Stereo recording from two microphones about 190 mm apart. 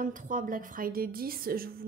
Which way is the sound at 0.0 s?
45° right (ahead or behind).